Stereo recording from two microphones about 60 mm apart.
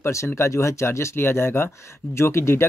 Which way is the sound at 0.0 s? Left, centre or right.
Left.